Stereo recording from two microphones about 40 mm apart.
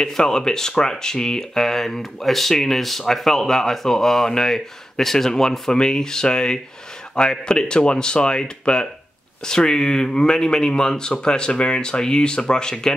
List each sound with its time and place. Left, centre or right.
0.0 s speech: centre